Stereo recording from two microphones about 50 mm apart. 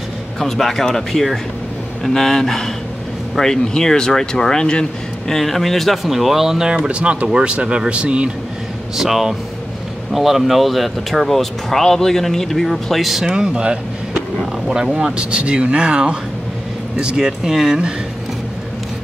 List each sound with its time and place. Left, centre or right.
0.4 s speech: centre
5.3 s speech: centre
6.9 s speech: right
8.9 s speech: centre